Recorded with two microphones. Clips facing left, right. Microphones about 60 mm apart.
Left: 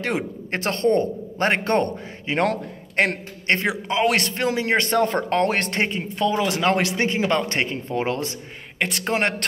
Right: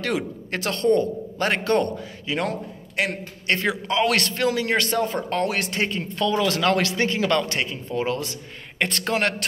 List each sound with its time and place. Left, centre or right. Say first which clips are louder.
0.0 s speech: even; left
2.4 s a man's voice: left 5 dB; left
3.6 s a man's voice: right 1 dB; left
4.9 s speech: left 4 dB; left
5.9 s a man's voice: left 1 dB; left
7.4 s speech: left 3 dB; left
8.7 s speech: even; centre